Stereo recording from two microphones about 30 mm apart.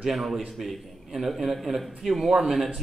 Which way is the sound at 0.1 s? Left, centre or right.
Centre.